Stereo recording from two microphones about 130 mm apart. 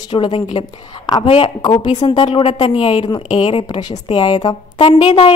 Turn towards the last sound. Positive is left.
turn(degrees=50)  # may be behind; listen again after turning